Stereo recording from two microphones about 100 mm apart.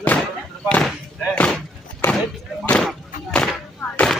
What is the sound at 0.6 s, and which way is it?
Speech, 10° left (ahead or behind).